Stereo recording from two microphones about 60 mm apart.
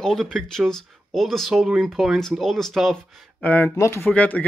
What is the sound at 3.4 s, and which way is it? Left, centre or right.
Speech, left.